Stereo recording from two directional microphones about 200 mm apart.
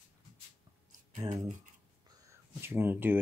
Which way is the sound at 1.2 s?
20° right (ahead or behind).